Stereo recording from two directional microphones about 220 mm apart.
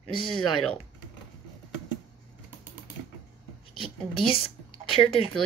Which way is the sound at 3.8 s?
25° left (ahead or behind).